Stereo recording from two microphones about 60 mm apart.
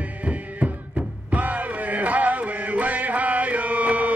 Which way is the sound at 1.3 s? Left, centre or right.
Right.